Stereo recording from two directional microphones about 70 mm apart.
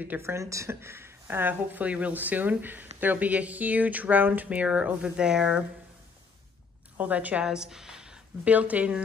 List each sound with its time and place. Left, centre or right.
0.2 s speech: right; by 5.6 s centre
7.0 s a woman's voice: right